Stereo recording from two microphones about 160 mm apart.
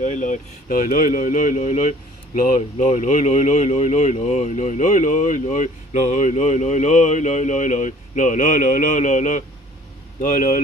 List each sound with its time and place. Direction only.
0.0 s speech: 50° left (ahead or behind)